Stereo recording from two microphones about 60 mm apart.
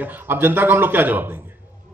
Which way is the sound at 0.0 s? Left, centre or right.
Right.